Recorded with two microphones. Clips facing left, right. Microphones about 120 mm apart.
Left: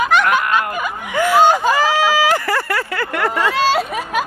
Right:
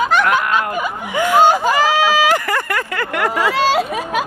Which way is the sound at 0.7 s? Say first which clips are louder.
Even; 15° right (ahead or behind).